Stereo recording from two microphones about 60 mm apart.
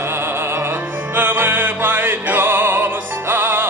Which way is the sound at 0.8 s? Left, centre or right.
Right.